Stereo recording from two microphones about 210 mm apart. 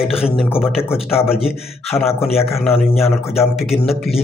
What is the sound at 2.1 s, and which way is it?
Speech, 30° left (ahead or behind).